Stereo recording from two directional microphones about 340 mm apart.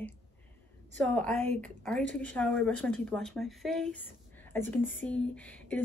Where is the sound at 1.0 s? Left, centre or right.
Centre.